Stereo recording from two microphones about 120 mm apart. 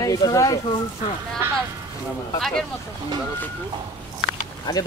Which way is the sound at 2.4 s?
5° left (ahead or behind).